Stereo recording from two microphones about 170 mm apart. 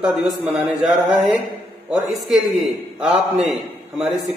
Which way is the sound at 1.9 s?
Centre (ahead or behind).